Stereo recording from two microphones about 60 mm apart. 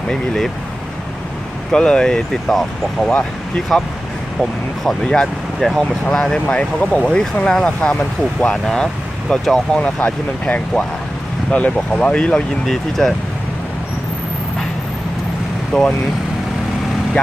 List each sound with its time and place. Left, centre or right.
0.1 s speech: centre
1.7 s speech: centre
6.4 s speech: centre
9.8 s speech: left; by 13.1 s centre
15.7 s speech: centre